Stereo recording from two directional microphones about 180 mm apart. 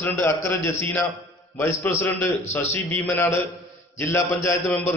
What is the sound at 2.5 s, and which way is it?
A man's voice, 10° left (ahead or behind).